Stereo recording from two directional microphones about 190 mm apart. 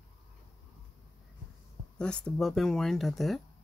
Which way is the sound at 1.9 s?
5° left (ahead or behind).